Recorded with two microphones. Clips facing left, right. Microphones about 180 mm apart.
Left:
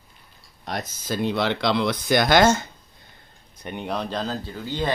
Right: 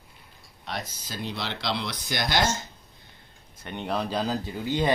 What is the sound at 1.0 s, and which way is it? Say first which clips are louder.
Speech: left 14 dB; 55° left (ahead or behind).